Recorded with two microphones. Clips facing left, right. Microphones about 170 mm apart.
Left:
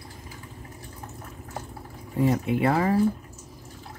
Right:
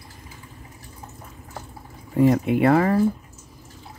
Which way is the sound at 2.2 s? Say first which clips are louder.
Right 5 dB; 60° right (ahead or behind).